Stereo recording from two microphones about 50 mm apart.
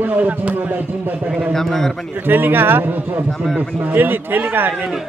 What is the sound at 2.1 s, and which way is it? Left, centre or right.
A man's voice, right.